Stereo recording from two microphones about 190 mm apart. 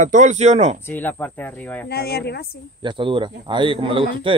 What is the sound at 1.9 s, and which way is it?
Speech, 55° left (ahead or behind).